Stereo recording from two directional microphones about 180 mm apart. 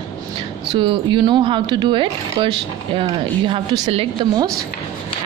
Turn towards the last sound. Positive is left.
turn(degrees=-30)  # may be behind; listen again after turning